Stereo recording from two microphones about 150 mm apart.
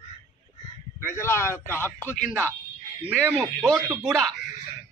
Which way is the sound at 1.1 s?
15° left (ahead or behind).